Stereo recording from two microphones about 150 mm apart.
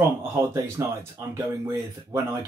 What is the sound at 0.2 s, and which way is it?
Speech, 15° right (ahead or behind).